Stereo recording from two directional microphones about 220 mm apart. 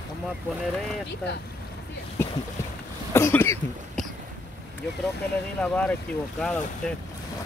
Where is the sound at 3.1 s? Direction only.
10° left (ahead or behind).